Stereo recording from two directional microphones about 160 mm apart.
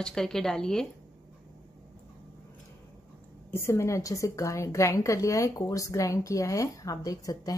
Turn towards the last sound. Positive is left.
turn(degrees=20)  # may be behind; listen again after turning